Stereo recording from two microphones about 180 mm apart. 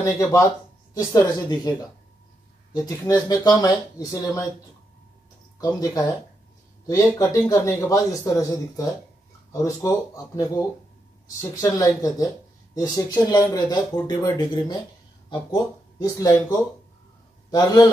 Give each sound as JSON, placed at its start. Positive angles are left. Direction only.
{"t": 0.0, "sound": "a man's voice", "side_deg": 15}
{"t": 5.6, "sound": "a man's voice", "side_deg": 20}
{"t": 9.8, "sound": "speech", "side_deg": 20}